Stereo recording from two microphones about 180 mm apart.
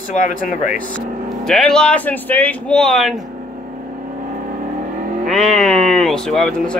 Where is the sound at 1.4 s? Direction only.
5° left (ahead or behind).